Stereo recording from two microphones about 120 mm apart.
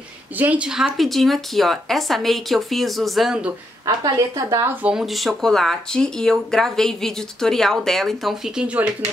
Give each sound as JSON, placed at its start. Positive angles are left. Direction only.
{"t": 0.4, "sound": "speech", "side_deg": -10}
{"t": 3.8, "sound": "a woman's voice", "side_deg": -30}
{"t": 4.8, "sound": "speech", "side_deg": -5}